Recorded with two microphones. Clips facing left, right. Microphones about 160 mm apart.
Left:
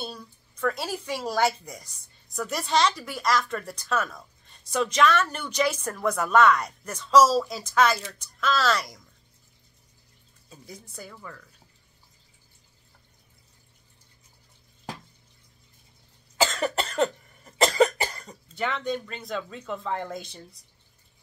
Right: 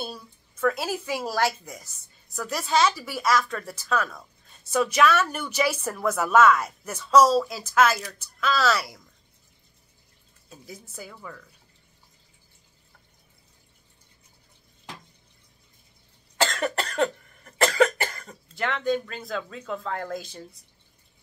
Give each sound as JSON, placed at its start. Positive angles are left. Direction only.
{"t": 0.0, "sound": "speech", "side_deg": -5}
{"t": 10.5, "sound": "speech", "side_deg": -5}
{"t": 16.3, "sound": "cough", "side_deg": 0}
{"t": 17.5, "sound": "cough", "side_deg": 20}
{"t": 18.2, "sound": "speech", "side_deg": 0}